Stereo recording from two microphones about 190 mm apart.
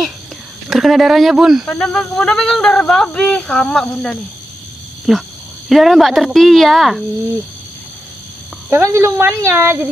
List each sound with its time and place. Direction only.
0.7 s speech: centre (ahead or behind)
8.6 s speech: 15° right (ahead or behind)